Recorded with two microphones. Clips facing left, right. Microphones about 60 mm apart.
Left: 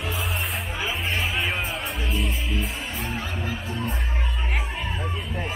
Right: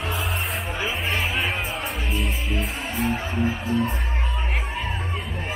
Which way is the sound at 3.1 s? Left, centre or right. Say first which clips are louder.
Right 5 dB; right.